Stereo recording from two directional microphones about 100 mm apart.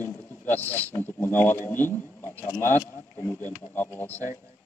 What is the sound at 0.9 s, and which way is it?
Speech, 20° left (ahead or behind).